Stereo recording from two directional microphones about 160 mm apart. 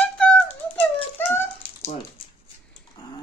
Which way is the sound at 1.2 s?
15° left (ahead or behind).